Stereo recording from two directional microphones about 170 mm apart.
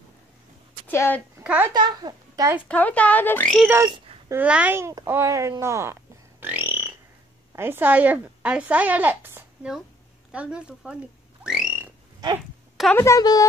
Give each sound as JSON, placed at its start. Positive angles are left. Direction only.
{"t": 0.8, "sound": "speech", "side_deg": 10}
{"t": 1.4, "sound": "a woman's voice", "side_deg": -10}
{"t": 1.7, "sound": "a child's voice", "side_deg": -25}
{"t": 2.7, "sound": "speech", "side_deg": 10}
{"t": 3.8, "sound": "babbling", "side_deg": -25}
{"t": 4.4, "sound": "speech", "side_deg": -10}
{"t": 6.4, "sound": "a sound", "side_deg": -10}
{"t": 7.5, "sound": "speech", "side_deg": -15}
{"t": 11.4, "sound": "a sound", "side_deg": -5}
{"t": 12.9, "sound": "speech", "side_deg": 15}